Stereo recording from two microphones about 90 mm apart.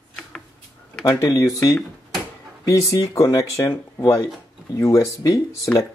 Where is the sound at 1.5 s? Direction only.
35° left (ahead or behind).